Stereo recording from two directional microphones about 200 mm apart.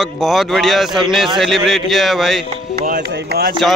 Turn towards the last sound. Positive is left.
turn(degrees=-55)  # may be behind; listen again after turning